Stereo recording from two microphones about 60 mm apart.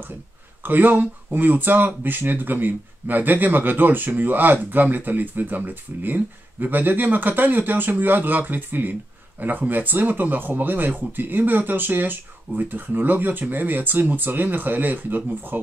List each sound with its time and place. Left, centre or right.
0.7 s speech: right